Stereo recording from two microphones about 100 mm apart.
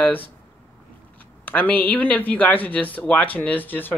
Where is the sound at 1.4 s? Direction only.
15° left (ahead or behind).